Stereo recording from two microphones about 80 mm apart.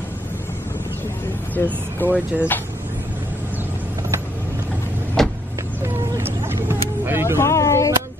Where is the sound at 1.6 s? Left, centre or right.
Left.